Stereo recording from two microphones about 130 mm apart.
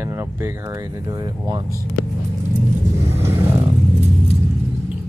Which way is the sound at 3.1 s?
20° right (ahead or behind).